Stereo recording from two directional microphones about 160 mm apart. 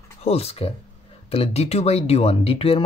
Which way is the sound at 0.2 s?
40° left (ahead or behind).